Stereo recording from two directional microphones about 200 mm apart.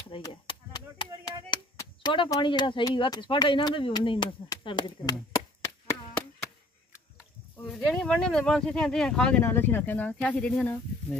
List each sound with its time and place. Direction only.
0.1 s chop: 25° left (ahead or behind)
7.5 s speech: 5° left (ahead or behind)